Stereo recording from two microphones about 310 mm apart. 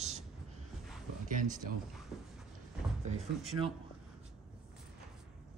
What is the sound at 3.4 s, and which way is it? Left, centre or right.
Speech, centre.